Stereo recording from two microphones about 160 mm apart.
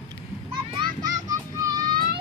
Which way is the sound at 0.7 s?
25° right (ahead or behind).